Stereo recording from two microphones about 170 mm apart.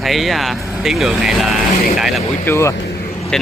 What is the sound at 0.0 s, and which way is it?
Speech, centre (ahead or behind).